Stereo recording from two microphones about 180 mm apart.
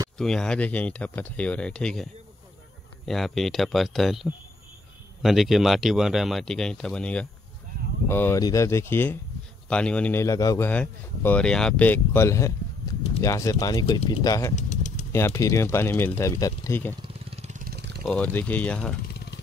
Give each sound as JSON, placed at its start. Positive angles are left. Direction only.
{"t": 0.2, "sound": "speech", "side_deg": 5}
{"t": 3.1, "sound": "speech", "side_deg": 0}
{"t": 10.7, "sound": "speech", "side_deg": 10}
{"t": 14.5, "sound": "vehicle", "side_deg": 40}
{"t": 15.1, "sound": "speech", "side_deg": 15}
{"t": 17.0, "sound": "vehicle", "side_deg": -40}
{"t": 18.0, "sound": "speech", "side_deg": 10}